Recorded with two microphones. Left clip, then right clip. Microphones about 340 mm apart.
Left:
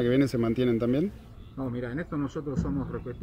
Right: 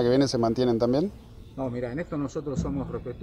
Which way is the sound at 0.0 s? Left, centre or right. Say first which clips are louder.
Right 3 dB; right.